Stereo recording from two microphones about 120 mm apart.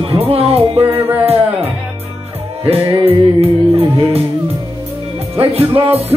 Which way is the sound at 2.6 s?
55° right (ahead or behind).